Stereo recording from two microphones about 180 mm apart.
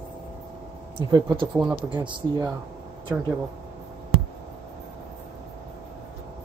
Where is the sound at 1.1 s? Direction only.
25° right (ahead or behind).